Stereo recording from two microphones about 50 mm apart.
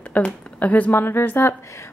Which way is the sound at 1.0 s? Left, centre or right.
Left.